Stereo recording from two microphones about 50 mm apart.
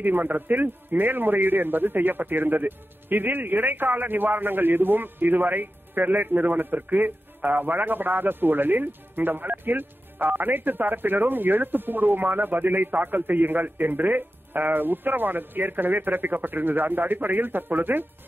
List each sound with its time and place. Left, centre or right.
0.0 s a man's voice: right